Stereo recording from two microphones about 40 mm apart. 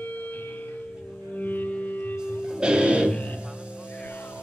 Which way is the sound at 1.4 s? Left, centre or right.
Left.